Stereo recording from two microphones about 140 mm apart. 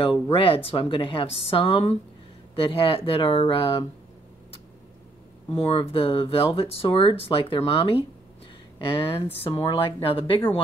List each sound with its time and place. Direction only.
0.3 s speech: 40° left (ahead or behind)
5.6 s speech: 40° left (ahead or behind)